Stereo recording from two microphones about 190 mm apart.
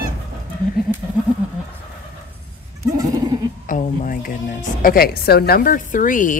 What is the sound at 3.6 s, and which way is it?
Speech, 45° left (ahead or behind).